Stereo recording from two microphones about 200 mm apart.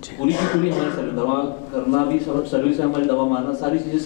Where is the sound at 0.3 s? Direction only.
15° left (ahead or behind).